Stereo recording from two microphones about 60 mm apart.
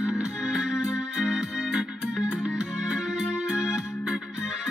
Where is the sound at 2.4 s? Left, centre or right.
Centre.